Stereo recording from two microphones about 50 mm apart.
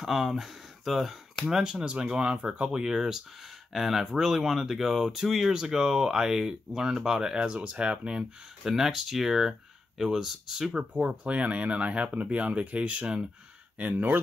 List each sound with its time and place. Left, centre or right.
0.0 s speech: centre
10.9 s speech: right